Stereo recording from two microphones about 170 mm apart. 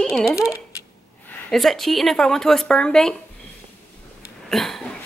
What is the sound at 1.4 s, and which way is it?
Speech, centre (ahead or behind).